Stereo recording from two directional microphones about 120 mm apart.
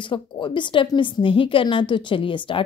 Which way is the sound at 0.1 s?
40° left (ahead or behind).